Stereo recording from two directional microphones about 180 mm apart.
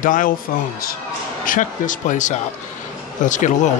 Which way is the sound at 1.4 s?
45° left (ahead or behind).